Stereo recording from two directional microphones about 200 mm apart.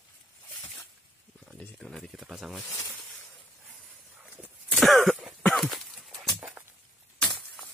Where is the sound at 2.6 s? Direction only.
15° left (ahead or behind).